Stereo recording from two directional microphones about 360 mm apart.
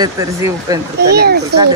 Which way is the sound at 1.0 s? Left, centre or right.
Right.